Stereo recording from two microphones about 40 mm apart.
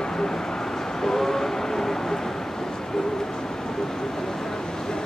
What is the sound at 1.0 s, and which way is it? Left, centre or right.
Train, centre.